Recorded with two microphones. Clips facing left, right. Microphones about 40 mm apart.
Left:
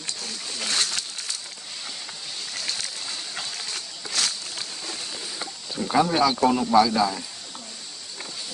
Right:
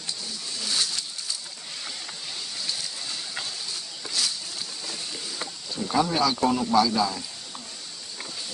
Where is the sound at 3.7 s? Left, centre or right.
Left.